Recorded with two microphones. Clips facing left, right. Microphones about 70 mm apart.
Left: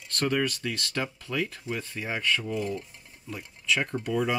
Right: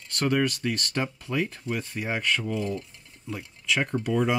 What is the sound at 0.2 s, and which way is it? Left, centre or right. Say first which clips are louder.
Speech: right 2 dB; centre.